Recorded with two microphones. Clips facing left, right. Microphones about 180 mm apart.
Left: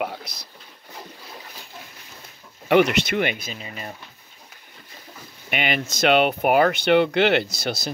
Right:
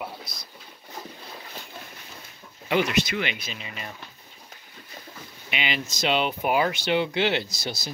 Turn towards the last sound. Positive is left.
turn(degrees=65)  # may be behind; listen again after turning